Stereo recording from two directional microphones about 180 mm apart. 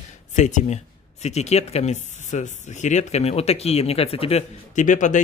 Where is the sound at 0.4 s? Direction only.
40° left (ahead or behind).